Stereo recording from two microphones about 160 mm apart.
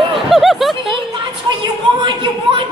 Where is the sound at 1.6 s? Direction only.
30° right (ahead or behind).